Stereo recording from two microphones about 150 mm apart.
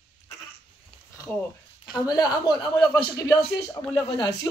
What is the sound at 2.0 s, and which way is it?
A man's voice, 25° left (ahead or behind).